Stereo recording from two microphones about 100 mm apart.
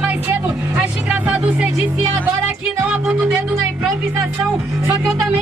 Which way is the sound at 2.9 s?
15° right (ahead or behind).